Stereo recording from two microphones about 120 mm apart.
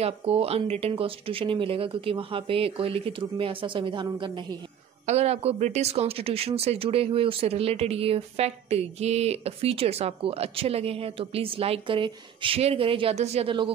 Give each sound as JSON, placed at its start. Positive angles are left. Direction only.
{"t": 0.0, "sound": "speech", "side_deg": -60}
{"t": 5.0, "sound": "speech", "side_deg": -60}
{"t": 13.5, "sound": "speech", "side_deg": -45}